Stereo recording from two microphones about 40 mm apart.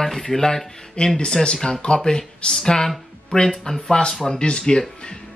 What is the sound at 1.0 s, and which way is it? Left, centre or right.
Speech, left.